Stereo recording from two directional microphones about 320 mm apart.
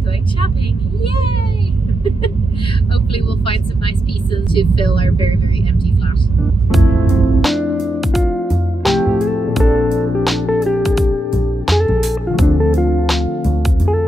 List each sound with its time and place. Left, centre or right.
4.5 s speech: centre
7.4 s music: centre